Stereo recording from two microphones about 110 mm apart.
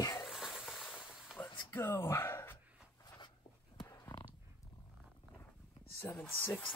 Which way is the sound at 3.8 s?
30° left (ahead or behind).